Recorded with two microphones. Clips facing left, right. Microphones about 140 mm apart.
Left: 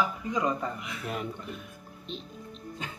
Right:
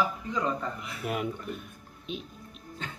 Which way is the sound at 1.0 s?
5° right (ahead or behind).